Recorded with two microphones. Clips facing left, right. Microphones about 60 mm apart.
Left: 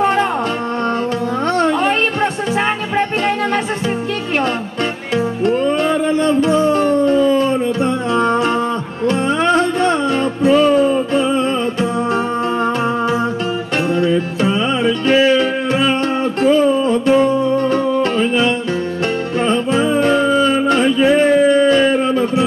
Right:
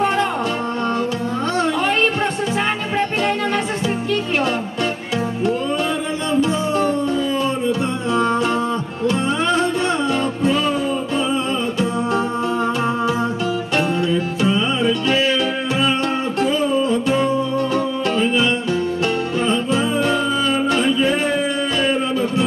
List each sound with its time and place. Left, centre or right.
6.2 s music: left
14.0 s music: left
19.4 s music: left